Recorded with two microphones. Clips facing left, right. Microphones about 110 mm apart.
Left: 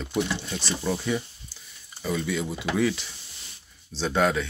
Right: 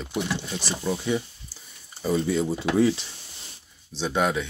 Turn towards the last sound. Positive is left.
turn(degrees=-15)  # may be behind; listen again after turning